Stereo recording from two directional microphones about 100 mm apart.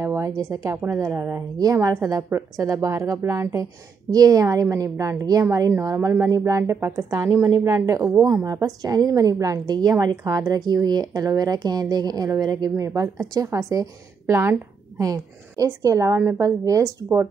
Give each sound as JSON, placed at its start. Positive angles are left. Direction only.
{"t": 0.0, "sound": "a woman's voice", "side_deg": -30}
{"t": 4.1, "sound": "a woman's voice", "side_deg": -35}